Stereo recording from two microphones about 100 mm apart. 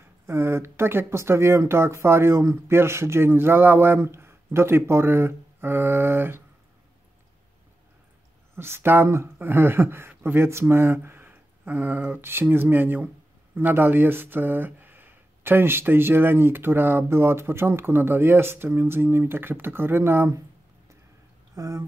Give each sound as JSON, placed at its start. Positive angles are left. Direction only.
{"t": 0.3, "sound": "speech", "side_deg": -25}
{"t": 8.5, "sound": "speech", "side_deg": -25}
{"t": 21.5, "sound": "speech", "side_deg": -35}